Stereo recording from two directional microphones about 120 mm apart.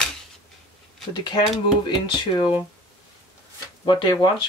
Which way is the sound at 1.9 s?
40° left (ahead or behind).